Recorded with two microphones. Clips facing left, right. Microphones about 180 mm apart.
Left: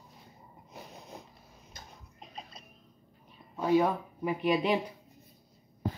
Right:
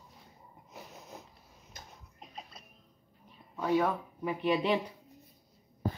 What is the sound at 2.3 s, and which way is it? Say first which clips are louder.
Music: left 1 dB; 5° right (ahead or behind).